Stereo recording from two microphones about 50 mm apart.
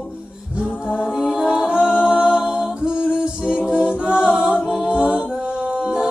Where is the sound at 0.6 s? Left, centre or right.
Centre.